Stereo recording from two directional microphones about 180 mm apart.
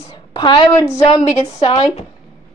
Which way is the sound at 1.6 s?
30° left (ahead or behind).